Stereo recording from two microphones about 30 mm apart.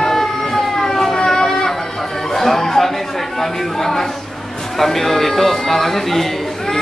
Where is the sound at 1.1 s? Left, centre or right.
Left.